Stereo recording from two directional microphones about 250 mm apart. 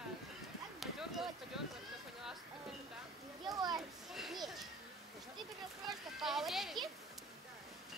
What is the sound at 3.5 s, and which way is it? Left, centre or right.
Children playing, centre.